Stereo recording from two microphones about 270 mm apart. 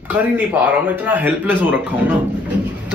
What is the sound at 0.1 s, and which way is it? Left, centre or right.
A man's voice, centre.